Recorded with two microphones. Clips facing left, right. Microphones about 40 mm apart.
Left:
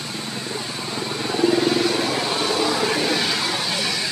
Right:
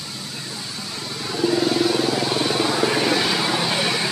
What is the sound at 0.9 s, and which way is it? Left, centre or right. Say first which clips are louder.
Vehicle: left 4 dB; left.